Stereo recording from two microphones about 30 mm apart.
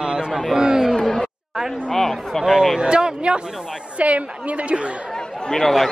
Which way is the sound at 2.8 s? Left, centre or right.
Right.